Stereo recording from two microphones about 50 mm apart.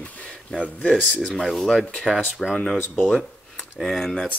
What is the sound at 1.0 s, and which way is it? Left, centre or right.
Speech, centre.